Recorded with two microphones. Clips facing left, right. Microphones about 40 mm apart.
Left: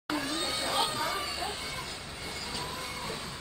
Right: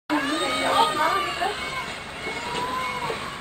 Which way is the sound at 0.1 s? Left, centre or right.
Right.